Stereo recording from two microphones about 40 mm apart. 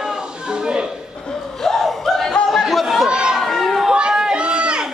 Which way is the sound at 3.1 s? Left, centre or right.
Centre.